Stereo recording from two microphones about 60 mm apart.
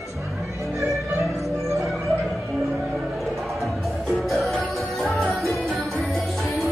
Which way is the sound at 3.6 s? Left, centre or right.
Centre.